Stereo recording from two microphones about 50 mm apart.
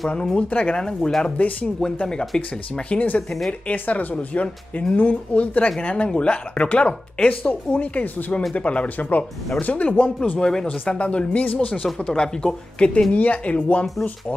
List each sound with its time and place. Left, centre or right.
0.4 s speech: left
0.7 s speech: centre
1.4 s speech: left
1.8 s speech: centre
2.9 s speech: left
10.4 s speech: centre
11.0 s speech: left
12.1 s speech: centre